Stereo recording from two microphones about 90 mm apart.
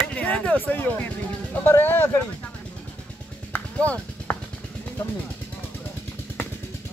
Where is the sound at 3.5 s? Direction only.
20° left (ahead or behind).